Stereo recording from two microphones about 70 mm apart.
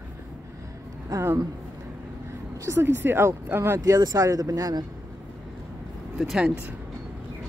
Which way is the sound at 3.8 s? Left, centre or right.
Right.